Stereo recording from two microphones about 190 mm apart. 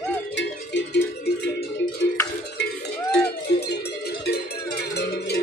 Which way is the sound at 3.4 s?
60° left (ahead or behind).